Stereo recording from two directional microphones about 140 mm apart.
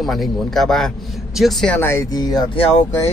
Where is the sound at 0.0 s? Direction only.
Centre (ahead or behind).